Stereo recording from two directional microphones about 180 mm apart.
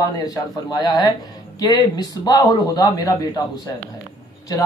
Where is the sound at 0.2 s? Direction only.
20° left (ahead or behind).